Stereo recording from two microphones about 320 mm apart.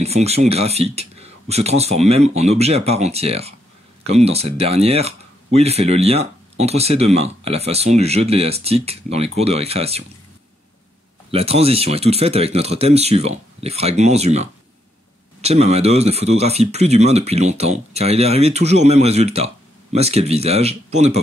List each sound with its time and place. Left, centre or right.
0.0 s speech: centre
11.3 s speech: centre